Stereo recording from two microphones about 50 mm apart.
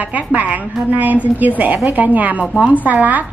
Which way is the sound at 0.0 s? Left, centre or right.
Right.